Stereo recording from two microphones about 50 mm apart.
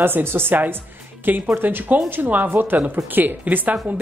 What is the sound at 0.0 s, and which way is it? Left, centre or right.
A woman's voice, right.